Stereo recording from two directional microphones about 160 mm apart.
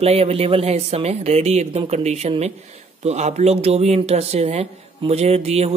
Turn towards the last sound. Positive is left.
turn(degrees=-40)  # may be behind; listen again after turning